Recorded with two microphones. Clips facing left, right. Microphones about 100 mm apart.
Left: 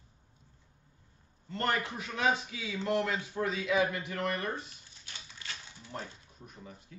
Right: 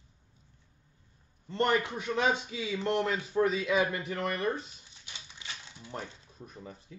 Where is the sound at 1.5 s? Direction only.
25° right (ahead or behind).